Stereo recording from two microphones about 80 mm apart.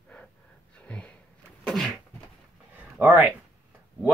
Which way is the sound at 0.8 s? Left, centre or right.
Centre.